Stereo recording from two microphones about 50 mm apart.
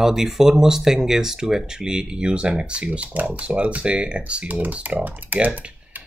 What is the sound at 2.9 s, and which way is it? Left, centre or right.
Speech, right.